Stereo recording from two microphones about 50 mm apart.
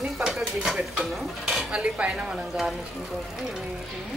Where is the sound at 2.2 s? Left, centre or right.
Centre.